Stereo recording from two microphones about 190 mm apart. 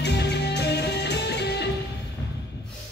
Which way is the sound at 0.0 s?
60° left (ahead or behind).